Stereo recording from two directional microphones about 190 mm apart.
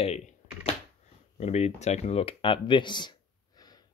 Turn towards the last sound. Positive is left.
turn(degrees=20)  # may be behind; listen again after turning